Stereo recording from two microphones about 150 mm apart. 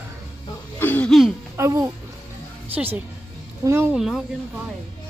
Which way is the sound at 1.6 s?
20° right (ahead or behind).